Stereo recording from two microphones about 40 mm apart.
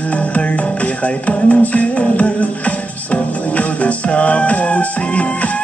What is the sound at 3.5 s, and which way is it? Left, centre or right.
Music, left.